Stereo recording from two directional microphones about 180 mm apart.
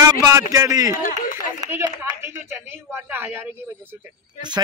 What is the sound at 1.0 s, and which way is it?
Speech, 50° left (ahead or behind).